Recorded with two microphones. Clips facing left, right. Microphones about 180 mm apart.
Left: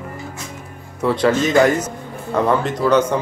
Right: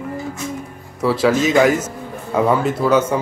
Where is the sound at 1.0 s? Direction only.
5° right (ahead or behind).